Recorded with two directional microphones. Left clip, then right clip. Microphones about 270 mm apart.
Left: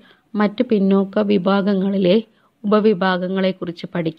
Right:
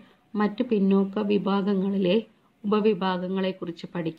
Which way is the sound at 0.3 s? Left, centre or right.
Left.